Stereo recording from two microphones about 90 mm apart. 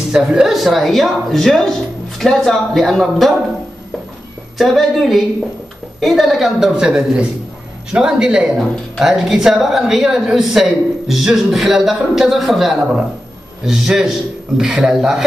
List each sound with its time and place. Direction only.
0.1 s a woman's voice: 10° right (ahead or behind)
4.6 s a woman's voice: centre (ahead or behind)